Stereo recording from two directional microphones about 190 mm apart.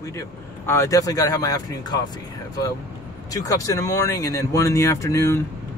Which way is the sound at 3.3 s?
20° left (ahead or behind).